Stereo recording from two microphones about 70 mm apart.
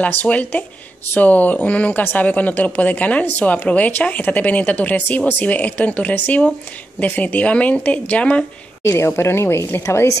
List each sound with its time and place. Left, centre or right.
0.0 s speech: left
8.8 s a woman's voice: left